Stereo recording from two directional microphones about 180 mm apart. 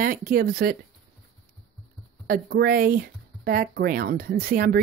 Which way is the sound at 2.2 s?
55° right (ahead or behind).